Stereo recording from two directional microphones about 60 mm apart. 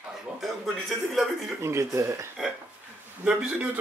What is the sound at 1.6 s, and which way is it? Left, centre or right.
Speech, right.